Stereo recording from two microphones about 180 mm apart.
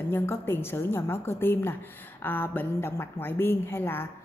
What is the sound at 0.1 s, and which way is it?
A woman's voice, 10° left (ahead or behind).